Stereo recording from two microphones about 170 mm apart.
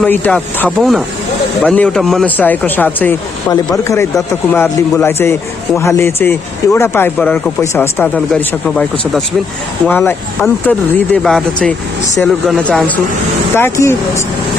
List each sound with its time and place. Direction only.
0.0 s a man's voice: 10° left (ahead or behind)
0.7 s a man's voice: centre (ahead or behind); by 8.1 s 15° left (ahead or behind)
8.3 s a man's voice: 5° left (ahead or behind)